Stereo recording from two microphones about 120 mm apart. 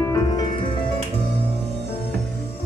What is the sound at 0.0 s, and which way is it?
Music, 30° left (ahead or behind).